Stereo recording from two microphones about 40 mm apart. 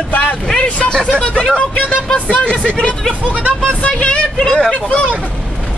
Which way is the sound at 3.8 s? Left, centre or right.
Left.